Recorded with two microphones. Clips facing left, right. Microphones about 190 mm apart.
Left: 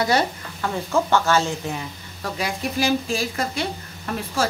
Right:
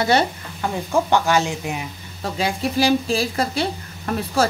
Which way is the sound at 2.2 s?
25° right (ahead or behind).